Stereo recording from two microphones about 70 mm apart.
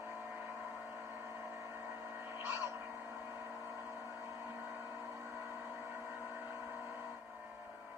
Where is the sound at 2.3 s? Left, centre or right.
Right.